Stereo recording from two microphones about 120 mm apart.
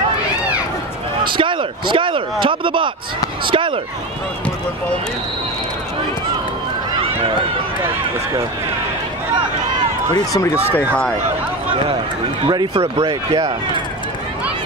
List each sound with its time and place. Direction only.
1.2 s speech: 45° right (ahead or behind)
10.1 s speech: 30° left (ahead or behind)
10.7 s speech: 10° left (ahead or behind)
12.4 s speech: 35° right (ahead or behind)
12.8 s speech: 55° right (ahead or behind)